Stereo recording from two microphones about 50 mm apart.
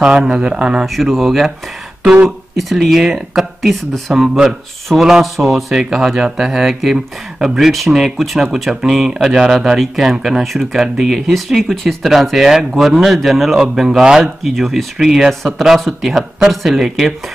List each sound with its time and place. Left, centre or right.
0.2 s speech: centre
0.8 s speech: centre